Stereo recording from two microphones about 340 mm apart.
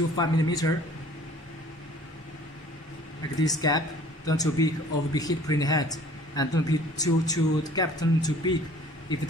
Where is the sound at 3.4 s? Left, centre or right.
Centre.